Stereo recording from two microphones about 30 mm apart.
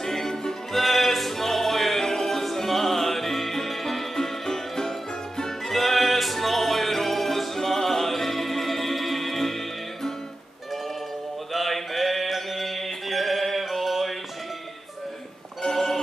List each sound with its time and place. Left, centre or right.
0.0 s music: centre
0.7 s music: centre
11.5 s music: centre
15.6 s a sound: centre